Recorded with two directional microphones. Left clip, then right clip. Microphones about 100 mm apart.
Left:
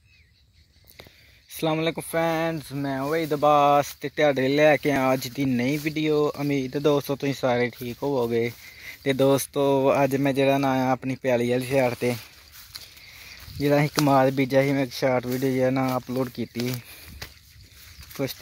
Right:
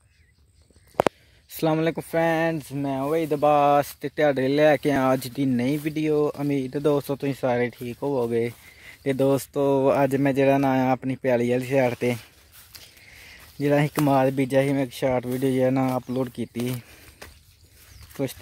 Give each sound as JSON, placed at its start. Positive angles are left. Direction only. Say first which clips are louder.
{"t": 1.5, "sound": "speech", "louder": "right 2 dB", "side_deg": -45}
{"t": 2.8, "sound": "speech", "louder": "right 1 dB", "side_deg": -25}
{"t": 5.5, "sound": "speech", "louder": "even", "side_deg": -20}
{"t": 8.8, "sound": "speech", "louder": "left 1 dB", "side_deg": -5}
{"t": 9.5, "sound": "speech", "louder": "even", "side_deg": -30}
{"t": 11.0, "sound": "speech", "louder": "right 1 dB", "side_deg": -25}
{"t": 13.7, "sound": "speech", "louder": "even", "side_deg": -15}
{"t": 15.2, "sound": "speech", "louder": "right 1 dB", "side_deg": -25}
{"t": 16.2, "sound": "speech", "louder": "even", "side_deg": -15}
{"t": 16.5, "sound": "a sound", "louder": "even", "side_deg": -30}